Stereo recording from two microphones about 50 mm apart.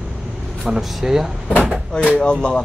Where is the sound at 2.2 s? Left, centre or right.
Centre.